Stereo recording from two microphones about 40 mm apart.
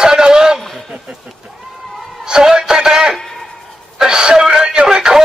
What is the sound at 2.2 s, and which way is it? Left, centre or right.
Speech, centre.